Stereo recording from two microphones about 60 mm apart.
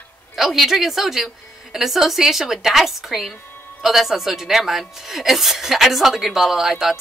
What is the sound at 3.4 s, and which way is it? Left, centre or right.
Music, left.